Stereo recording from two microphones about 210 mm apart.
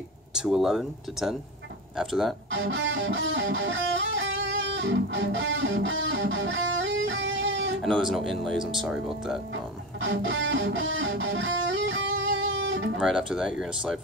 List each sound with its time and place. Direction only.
0.3 s speech: centre (ahead or behind)
2.5 s music: 60° right (ahead or behind)
7.8 s speech: centre (ahead or behind)
9.9 s music: 60° right (ahead or behind)
13.0 s speech: centre (ahead or behind)